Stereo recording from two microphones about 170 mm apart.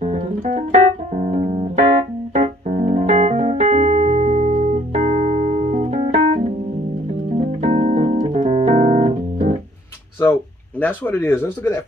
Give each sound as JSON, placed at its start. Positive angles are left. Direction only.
{"t": 0.0, "sound": "music", "side_deg": -45}
{"t": 0.6, "sound": "keyboard", "side_deg": -45}
{"t": 7.3, "sound": "music", "side_deg": -40}
{"t": 10.8, "sound": "speech", "side_deg": 10}